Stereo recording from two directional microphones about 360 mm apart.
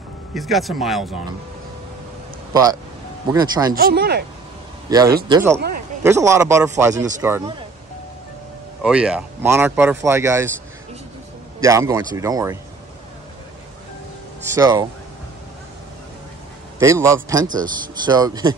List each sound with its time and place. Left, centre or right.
0.3 s speech: centre
2.5 s speech: centre
3.7 s speech: right
4.8 s speech: centre
8.8 s speech: centre
11.6 s speech: centre
14.5 s speech: centre
16.8 s speech: centre